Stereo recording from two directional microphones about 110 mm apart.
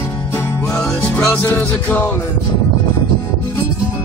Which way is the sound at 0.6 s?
10° left (ahead or behind).